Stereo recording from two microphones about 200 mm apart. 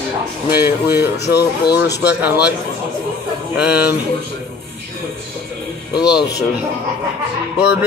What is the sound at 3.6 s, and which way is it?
Speech, 5° right (ahead or behind).